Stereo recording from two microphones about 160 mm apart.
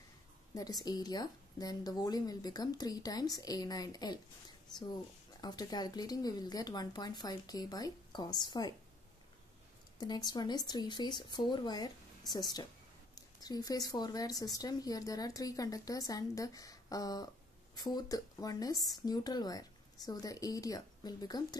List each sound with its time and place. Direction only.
0.6 s a woman's voice: 25° left (ahead or behind)
9.9 s a woman's voice: 25° left (ahead or behind)